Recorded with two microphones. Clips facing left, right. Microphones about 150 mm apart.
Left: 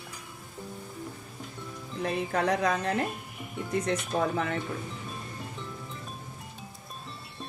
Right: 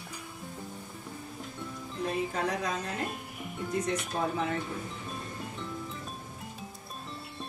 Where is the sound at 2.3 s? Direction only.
70° left (ahead or behind).